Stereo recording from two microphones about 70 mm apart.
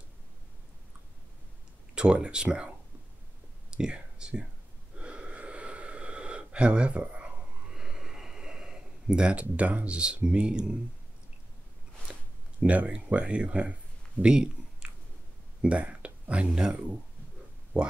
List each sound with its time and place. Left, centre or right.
2.0 s speech: centre
3.7 s speech: centre
4.9 s gasp: centre
12.1 s speech: centre
14.2 s a sound: centre
16.5 s speech: centre